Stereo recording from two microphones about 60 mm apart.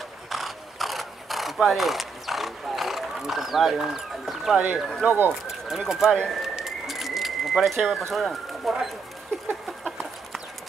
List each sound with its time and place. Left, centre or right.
0.3 s a sound: centre
5.0 s speech: right
5.7 s speech: centre
6.2 s bird: centre
8.1 s speech: centre
9.8 s chicken: centre